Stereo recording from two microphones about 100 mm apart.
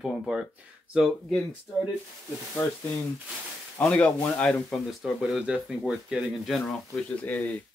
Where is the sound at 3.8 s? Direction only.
10° left (ahead or behind).